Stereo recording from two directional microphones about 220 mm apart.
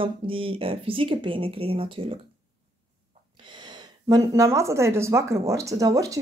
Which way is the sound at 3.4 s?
20° right (ahead or behind).